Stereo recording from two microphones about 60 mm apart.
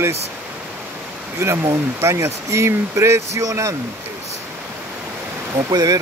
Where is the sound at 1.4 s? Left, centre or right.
Right.